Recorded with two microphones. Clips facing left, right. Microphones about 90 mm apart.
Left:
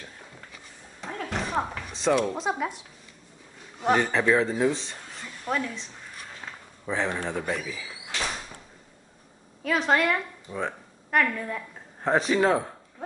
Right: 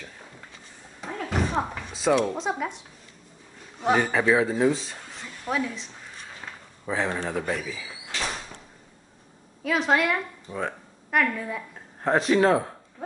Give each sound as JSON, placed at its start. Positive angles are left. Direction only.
{"t": 1.0, "sound": "a sound", "side_deg": -5}
{"t": 3.8, "sound": "speech", "side_deg": -5}
{"t": 9.6, "sound": "a woman's voice", "side_deg": 0}